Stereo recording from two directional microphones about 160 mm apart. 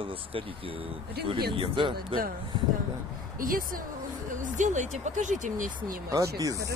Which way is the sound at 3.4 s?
60° right (ahead or behind).